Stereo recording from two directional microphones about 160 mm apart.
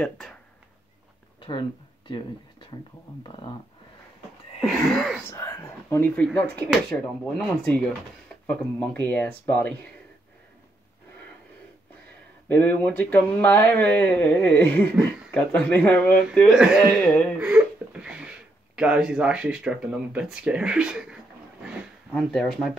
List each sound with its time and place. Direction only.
0.0 s speech: 5° left (ahead or behind)
1.4 s a sound: 30° left (ahead or behind)
3.3 s speech: 30° left (ahead or behind)
4.6 s speech: centre (ahead or behind)
5.3 s speech: 20° left (ahead or behind)
8.5 s speech: 10° left (ahead or behind)
12.4 s speech: 10° left (ahead or behind)
16.3 s speech: 5° right (ahead or behind)
17.0 s speech: 5° left (ahead or behind)
17.4 s a sound: 5° right (ahead or behind)
18.8 s speech: 5° right (ahead or behind)